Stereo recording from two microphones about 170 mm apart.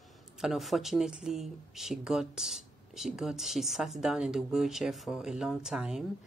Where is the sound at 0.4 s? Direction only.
Centre (ahead or behind).